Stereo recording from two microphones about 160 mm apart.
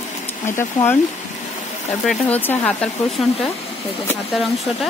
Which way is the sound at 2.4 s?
10° left (ahead or behind).